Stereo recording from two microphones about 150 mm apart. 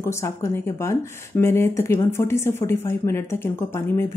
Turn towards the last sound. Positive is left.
turn(degrees=15)  # may be behind; listen again after turning